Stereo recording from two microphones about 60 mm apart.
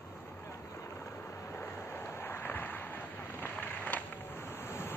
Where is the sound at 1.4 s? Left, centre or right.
Left.